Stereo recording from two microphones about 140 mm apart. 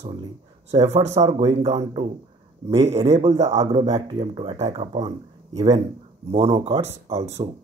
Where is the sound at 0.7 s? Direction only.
30° right (ahead or behind); by 3.6 s 50° right (ahead or behind).